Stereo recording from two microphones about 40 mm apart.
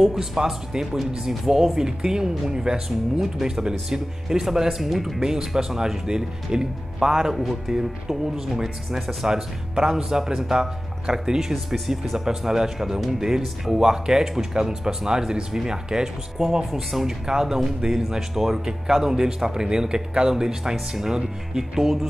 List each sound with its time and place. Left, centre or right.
0.0 s speech: centre
3.2 s speech: centre